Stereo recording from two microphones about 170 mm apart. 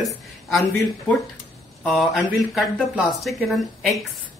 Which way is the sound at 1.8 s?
Centre (ahead or behind).